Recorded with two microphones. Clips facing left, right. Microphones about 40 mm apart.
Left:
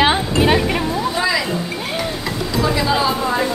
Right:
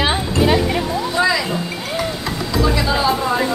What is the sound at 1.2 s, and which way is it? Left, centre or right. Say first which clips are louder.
Vehicle: right 4 dB; centre.